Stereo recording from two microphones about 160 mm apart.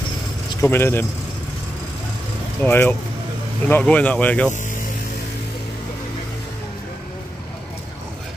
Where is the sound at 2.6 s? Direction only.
15° left (ahead or behind).